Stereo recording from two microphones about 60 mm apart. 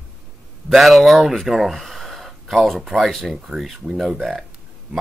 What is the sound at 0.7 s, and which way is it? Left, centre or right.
Speech, centre.